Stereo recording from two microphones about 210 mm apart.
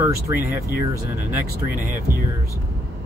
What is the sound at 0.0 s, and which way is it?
Speech, 10° right (ahead or behind).